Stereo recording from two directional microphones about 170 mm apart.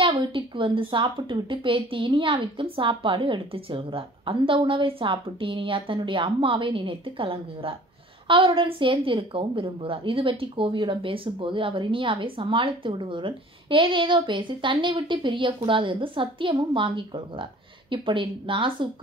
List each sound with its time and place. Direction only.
0.0 s a woman's voice: 30° right (ahead or behind)